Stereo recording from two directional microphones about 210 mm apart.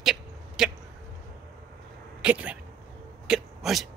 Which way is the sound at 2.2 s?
5° right (ahead or behind).